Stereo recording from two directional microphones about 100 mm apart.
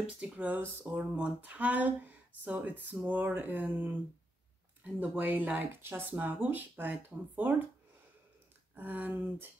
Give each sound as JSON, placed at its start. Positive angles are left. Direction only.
{"t": 0.0, "sound": "speech", "side_deg": -15}
{"t": 5.0, "sound": "speech", "side_deg": -15}
{"t": 8.7, "sound": "speech", "side_deg": -20}